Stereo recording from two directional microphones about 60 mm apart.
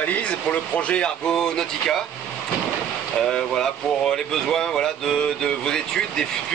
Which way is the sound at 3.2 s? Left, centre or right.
Centre.